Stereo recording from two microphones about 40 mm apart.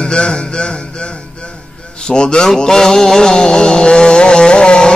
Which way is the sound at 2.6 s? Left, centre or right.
Centre.